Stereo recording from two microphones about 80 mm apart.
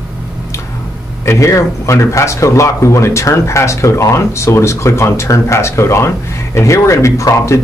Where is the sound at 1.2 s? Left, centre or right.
Left.